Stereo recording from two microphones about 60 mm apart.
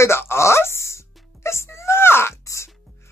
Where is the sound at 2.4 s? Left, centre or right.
Left.